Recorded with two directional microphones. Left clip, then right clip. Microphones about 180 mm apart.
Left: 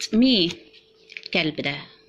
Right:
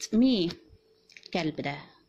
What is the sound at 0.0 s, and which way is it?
Speech, 15° right (ahead or behind).